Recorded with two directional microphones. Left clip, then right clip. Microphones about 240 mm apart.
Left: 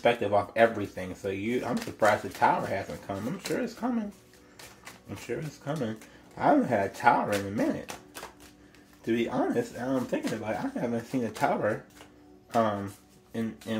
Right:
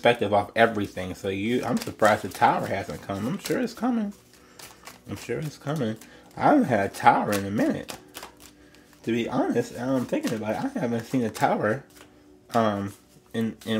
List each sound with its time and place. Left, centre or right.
0.0 s speech: right
5.2 s speech: right
9.0 s speech: right